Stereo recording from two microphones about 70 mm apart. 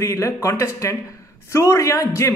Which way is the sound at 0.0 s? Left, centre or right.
Left.